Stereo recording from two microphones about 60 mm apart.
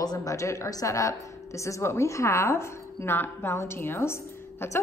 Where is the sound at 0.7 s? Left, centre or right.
Left.